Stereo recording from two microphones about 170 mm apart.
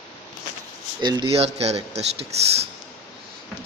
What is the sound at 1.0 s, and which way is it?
Speech, 25° right (ahead or behind).